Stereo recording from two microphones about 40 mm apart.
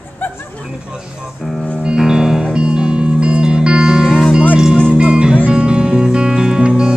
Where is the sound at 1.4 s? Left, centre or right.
Centre.